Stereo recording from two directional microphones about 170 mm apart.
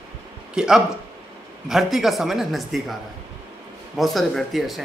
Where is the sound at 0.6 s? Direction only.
5° right (ahead or behind).